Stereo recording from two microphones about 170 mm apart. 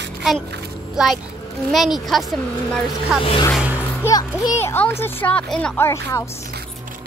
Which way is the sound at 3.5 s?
10° right (ahead or behind).